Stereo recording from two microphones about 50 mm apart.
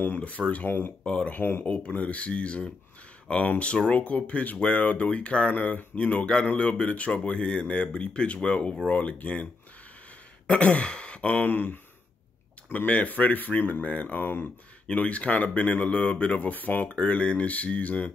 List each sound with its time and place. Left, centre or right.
0.0 s speech: left
1.0 s speech: left
1.3 s speech: left
1.6 s speech: left
11.3 s speech: left
14.9 s speech: left